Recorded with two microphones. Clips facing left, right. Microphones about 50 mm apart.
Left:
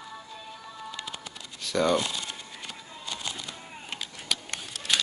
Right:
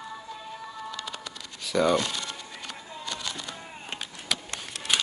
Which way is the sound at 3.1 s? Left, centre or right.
Right.